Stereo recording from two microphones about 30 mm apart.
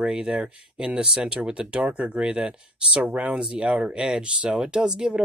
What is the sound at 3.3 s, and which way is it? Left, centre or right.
Speech, right.